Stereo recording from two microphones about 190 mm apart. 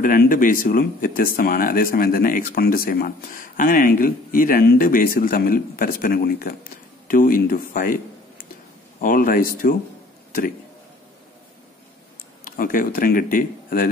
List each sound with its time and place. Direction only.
0.0 s speech: 45° left (ahead or behind)
12.4 s speech: 45° left (ahead or behind)